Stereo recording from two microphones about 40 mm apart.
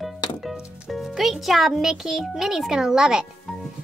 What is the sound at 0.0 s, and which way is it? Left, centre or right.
A child's voice, centre.